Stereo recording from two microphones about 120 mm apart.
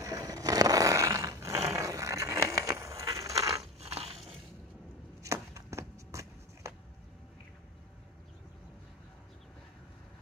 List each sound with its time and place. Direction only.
0.0 s a sound: 30° right (ahead or behind)
3.8 s crushing: 60° right (ahead or behind)
5.2 s shuffle: 25° right (ahead or behind)